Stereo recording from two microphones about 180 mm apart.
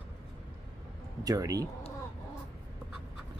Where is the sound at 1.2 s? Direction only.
20° right (ahead or behind).